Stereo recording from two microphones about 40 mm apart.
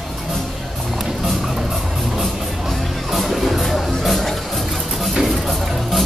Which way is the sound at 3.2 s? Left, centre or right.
Centre.